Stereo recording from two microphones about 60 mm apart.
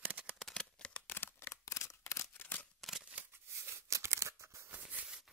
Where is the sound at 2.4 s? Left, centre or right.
Left.